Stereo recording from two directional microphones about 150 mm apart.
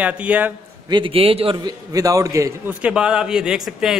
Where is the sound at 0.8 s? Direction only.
35° right (ahead or behind).